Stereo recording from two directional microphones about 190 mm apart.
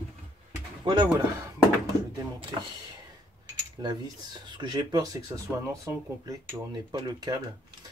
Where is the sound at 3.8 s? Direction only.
25° right (ahead or behind).